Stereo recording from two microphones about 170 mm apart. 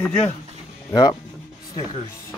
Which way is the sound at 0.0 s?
5° left (ahead or behind).